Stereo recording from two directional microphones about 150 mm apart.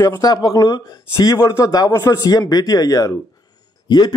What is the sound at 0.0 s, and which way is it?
A man's voice, 20° left (ahead or behind).